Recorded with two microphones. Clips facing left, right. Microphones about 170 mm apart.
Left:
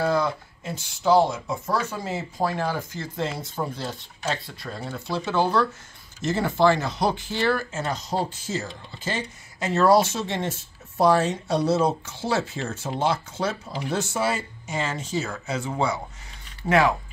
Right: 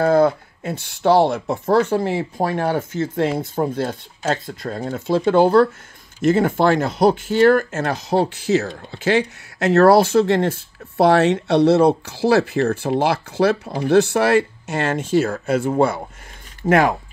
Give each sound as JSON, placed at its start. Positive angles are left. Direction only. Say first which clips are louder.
{"t": 0.0, "sound": "speech", "louder": "right 8 dB", "side_deg": -55}
{"t": 7.8, "sound": "speech", "louder": "right 8 dB", "side_deg": -65}